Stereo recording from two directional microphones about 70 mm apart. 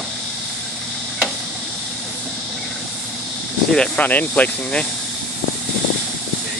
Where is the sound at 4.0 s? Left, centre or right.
Left.